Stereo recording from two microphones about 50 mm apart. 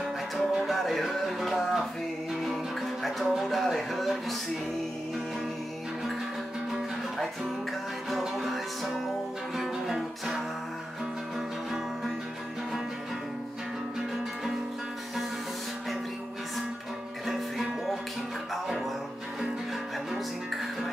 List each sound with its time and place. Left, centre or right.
0.0 s music: centre
6.7 s music: centre
17.3 s music: centre